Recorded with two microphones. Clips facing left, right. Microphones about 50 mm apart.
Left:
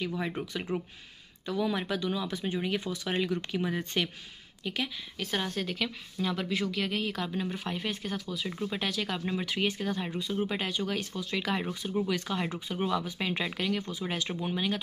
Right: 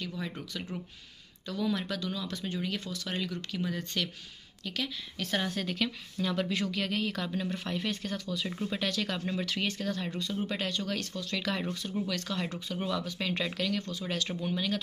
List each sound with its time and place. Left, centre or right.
0.0 s speech: left
5.2 s speech: centre